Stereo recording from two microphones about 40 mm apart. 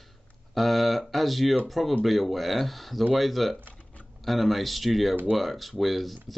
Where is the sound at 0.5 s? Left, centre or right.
Centre.